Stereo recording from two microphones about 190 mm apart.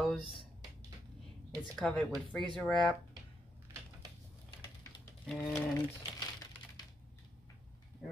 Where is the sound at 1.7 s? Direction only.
Centre (ahead or behind).